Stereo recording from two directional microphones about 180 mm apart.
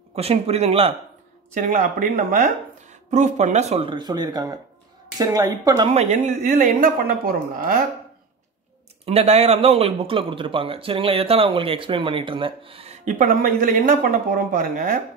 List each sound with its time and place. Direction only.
0.1 s a man's voice: 35° right (ahead or behind)
1.5 s a man's voice: 45° right (ahead or behind); by 5.9 s 20° right (ahead or behind)
5.9 s speech: 40° right (ahead or behind)
9.0 s a man's voice: 35° right (ahead or behind); by 15.0 s 50° right (ahead or behind)